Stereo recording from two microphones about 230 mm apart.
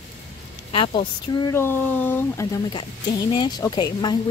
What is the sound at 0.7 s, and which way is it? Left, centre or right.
Speech, left.